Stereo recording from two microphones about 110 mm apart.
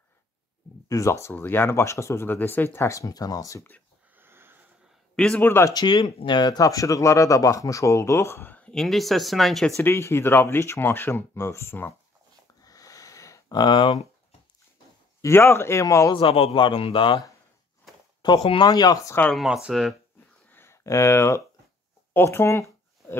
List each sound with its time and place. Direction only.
0.8 s speech: 30° left (ahead or behind)
4.2 s sniff: 20° right (ahead or behind)
5.1 s speech: 5° left (ahead or behind)
5.4 s speech: 20° left (ahead or behind)
5.7 s speech: 35° left (ahead or behind); by 9.8 s centre (ahead or behind)
9.8 s speech: 25° left (ahead or behind)
12.6 s a sound: 30° left (ahead or behind)
13.6 s speech: 45° left (ahead or behind)
15.2 s speech: 20° left (ahead or behind)
16.1 s speech: 55° left (ahead or behind)
18.2 s speech: 40° left (ahead or behind)
19.3 s speech: 5° right (ahead or behind)
20.4 s a sound: 20° left (ahead or behind)